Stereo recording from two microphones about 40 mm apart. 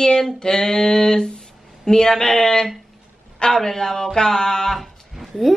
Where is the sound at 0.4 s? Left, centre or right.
Centre.